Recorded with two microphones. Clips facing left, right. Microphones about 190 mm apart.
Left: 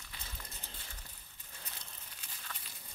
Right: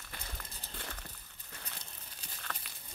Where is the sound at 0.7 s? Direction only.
70° right (ahead or behind).